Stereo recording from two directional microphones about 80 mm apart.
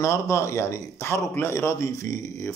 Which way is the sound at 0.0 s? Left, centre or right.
Left.